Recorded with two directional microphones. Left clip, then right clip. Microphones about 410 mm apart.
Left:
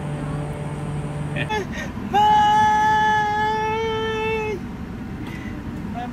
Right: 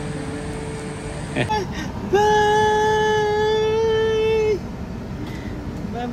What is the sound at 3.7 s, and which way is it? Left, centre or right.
Music, left.